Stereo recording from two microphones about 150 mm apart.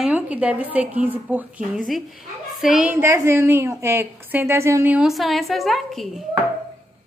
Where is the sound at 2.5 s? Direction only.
Centre (ahead or behind).